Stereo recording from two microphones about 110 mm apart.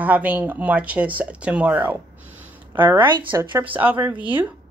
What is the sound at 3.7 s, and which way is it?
Speech, 15° right (ahead or behind).